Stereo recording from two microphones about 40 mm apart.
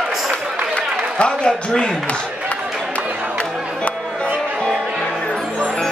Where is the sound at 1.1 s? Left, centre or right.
Left.